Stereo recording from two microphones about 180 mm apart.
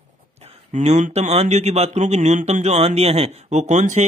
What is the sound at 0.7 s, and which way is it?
Speech, 40° right (ahead or behind).